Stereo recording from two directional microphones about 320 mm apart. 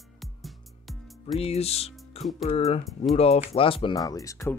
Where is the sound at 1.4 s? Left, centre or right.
Centre.